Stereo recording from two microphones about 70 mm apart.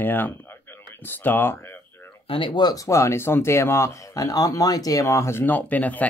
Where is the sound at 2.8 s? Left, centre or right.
Left.